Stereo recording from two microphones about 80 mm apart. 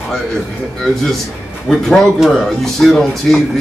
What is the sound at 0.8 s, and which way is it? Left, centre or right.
Speech, centre.